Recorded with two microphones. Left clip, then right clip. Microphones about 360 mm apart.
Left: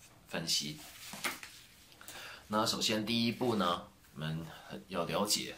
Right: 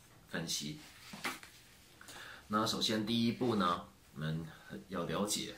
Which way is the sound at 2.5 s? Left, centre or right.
Centre.